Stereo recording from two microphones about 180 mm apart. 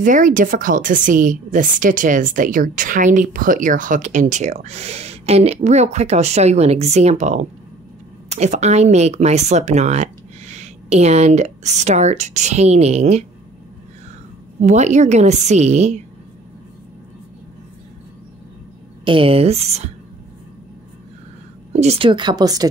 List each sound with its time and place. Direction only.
0.0 s a woman's voice: 45° right (ahead or behind)
14.6 s speech: 40° right (ahead or behind)
19.0 s speech: 30° right (ahead or behind)
21.7 s speech: 35° right (ahead or behind)